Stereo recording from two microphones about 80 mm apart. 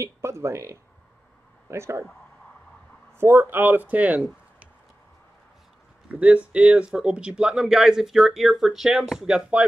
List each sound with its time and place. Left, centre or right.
0.0 s speech: right
3.2 s speech: right
6.0 s speech: centre